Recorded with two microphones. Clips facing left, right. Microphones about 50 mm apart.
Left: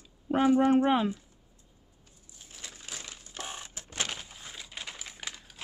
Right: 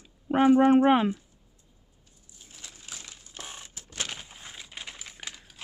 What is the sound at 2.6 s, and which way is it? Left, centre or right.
Crushing, left.